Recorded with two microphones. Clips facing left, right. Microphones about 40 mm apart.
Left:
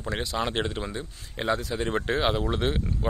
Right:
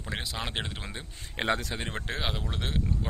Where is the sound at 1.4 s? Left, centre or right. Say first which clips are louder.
Left 2 dB; right.